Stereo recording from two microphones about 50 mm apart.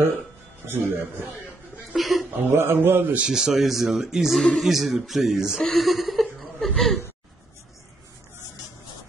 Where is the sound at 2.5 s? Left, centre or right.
Right.